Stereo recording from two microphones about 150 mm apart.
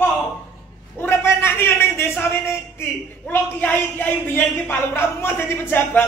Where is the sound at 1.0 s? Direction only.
15° left (ahead or behind).